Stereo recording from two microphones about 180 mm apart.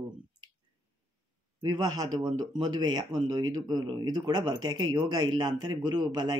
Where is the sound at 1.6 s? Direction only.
25° right (ahead or behind).